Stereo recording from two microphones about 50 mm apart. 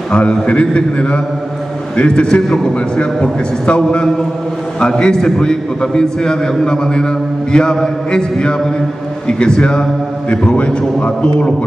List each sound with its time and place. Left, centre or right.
0.1 s a man's voice: left